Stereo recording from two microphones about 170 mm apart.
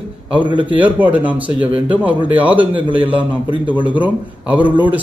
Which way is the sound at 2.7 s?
30° right (ahead or behind).